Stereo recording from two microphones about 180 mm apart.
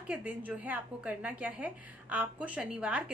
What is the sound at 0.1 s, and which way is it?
A woman's voice, 5° right (ahead or behind).